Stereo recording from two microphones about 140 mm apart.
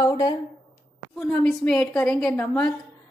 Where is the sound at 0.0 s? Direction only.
30° left (ahead or behind).